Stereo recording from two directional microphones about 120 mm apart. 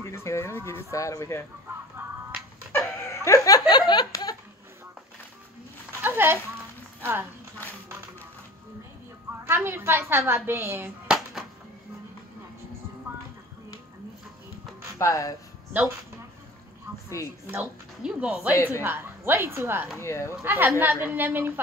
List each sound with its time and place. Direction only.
0.1 s speech: 20° left (ahead or behind)
1.7 s music: 15° right (ahead or behind)
3.1 s a sound: 25° left (ahead or behind)
6.0 s speech: 20° right (ahead or behind)
9.4 s a woman's voice: 20° right (ahead or behind)
11.1 s a sound: 5° right (ahead or behind)
13.1 s music: 20° right (ahead or behind)
15.0 s speech: 25° left (ahead or behind)
18.0 s a woman's voice: 10° right (ahead or behind)
18.5 s speech: 25° left (ahead or behind)
18.8 s a woman's voice: 20° right (ahead or behind)
20.0 s speech: 25° left (ahead or behind)
20.4 s a woman's voice: 20° right (ahead or behind)